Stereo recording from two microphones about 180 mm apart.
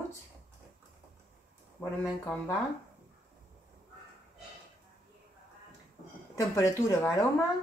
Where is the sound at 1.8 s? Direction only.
10° left (ahead or behind).